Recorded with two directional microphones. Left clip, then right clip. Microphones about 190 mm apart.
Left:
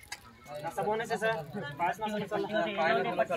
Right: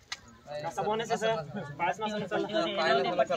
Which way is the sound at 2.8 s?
20° right (ahead or behind).